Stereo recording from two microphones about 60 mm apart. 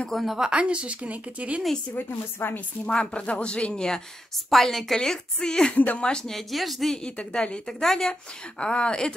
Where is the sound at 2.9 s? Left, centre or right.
Centre.